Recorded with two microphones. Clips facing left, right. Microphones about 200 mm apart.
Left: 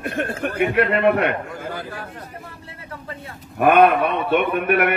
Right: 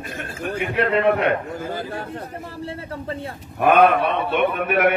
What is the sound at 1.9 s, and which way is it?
Speech, 30° right (ahead or behind).